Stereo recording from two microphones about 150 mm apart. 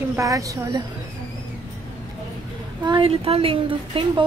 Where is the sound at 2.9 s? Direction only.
35° right (ahead or behind).